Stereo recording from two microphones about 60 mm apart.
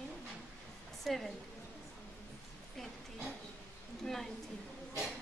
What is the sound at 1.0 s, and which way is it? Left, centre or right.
Speech, centre.